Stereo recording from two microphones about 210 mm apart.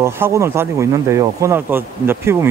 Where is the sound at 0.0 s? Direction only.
10° right (ahead or behind).